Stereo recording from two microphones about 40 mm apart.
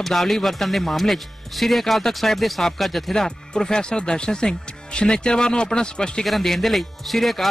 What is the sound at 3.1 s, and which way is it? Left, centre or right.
Speech, centre.